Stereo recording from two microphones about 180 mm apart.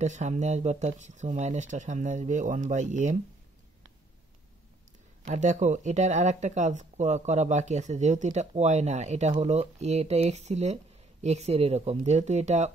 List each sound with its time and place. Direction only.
0.0 s speech: 40° right (ahead or behind)
5.2 s speech: 40° right (ahead or behind)